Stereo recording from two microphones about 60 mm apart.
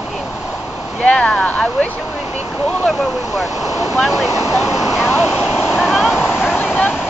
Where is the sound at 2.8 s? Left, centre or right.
Centre.